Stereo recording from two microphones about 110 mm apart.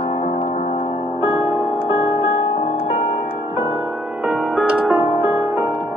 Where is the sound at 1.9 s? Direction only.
55° left (ahead or behind).